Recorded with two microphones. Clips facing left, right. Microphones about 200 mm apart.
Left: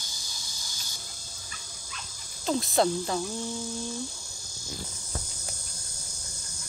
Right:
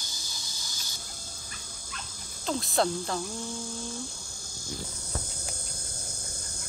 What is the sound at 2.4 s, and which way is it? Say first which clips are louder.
Speech: left 3 dB; centre (ahead or behind).